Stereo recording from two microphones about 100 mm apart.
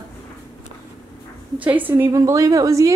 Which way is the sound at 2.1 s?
35° right (ahead or behind).